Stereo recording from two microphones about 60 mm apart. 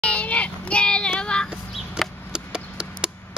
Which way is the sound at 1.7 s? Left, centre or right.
Centre.